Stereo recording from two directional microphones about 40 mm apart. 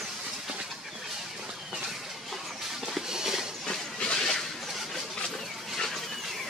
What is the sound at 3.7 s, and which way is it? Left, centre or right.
Train, centre.